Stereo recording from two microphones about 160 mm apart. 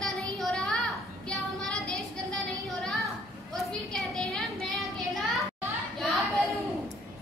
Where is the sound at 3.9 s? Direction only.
5° left (ahead or behind).